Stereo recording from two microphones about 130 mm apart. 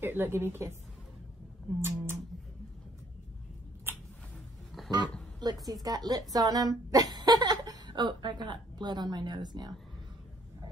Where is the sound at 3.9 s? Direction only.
15° right (ahead or behind).